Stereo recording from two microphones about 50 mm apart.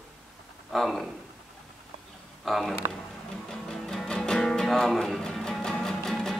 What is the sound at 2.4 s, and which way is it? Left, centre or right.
Speech, centre.